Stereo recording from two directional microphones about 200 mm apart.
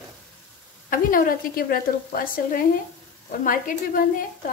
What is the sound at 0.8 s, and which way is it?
A woman's voice, 45° left (ahead or behind).